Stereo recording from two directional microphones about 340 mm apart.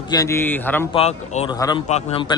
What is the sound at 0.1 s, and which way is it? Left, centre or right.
Speech, centre.